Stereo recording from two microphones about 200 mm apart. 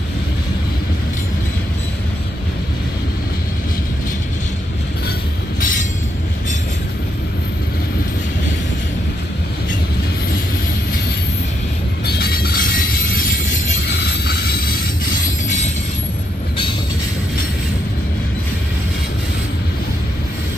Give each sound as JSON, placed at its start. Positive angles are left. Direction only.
{"t": 5.6, "sound": "train", "side_deg": 40}
{"t": 12.2, "sound": "train", "side_deg": 50}
{"t": 14.2, "sound": "a sound", "side_deg": 50}